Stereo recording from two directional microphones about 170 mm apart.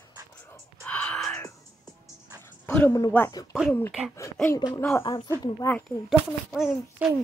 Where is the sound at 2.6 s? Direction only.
10° left (ahead or behind).